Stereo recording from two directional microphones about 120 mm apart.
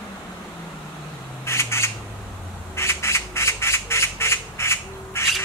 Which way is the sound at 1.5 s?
20° left (ahead or behind).